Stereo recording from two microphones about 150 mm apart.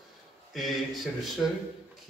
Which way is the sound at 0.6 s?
Centre (ahead or behind).